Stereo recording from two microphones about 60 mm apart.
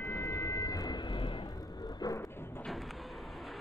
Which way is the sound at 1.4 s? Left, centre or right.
Left.